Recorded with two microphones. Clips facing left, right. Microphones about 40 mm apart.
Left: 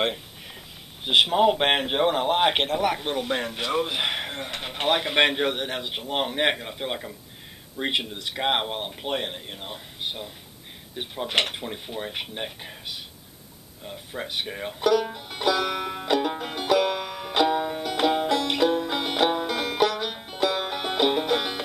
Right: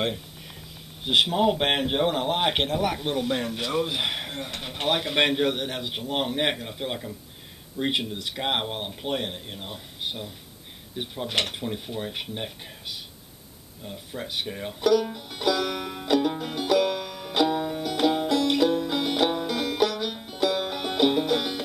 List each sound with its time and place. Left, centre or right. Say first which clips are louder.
1.0 s a man's voice: left 2 dB; centre
13.8 s banjo: left 1 dB; centre